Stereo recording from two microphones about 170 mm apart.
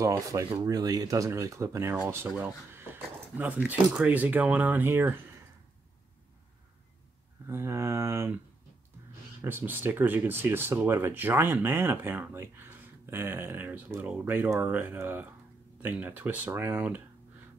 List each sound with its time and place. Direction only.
0.0 s speech: 20° right (ahead or behind)
7.4 s speech: 15° right (ahead or behind)
9.4 s speech: 10° right (ahead or behind)